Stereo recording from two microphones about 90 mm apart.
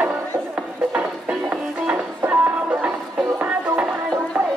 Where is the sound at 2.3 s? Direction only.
15° right (ahead or behind).